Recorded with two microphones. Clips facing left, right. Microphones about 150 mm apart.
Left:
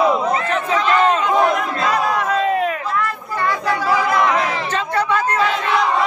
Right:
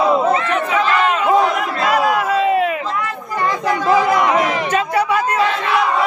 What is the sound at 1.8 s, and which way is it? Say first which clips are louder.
Crowd: right 3 dB; 10° right (ahead or behind).